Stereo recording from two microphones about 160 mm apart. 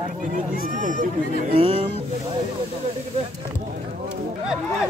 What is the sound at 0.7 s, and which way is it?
Speech, 55° right (ahead or behind).